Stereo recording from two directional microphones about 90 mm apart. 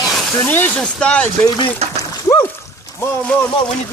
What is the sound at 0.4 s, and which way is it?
Speech, 20° left (ahead or behind).